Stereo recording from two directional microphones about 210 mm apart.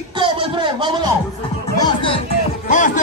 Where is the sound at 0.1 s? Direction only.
25° right (ahead or behind).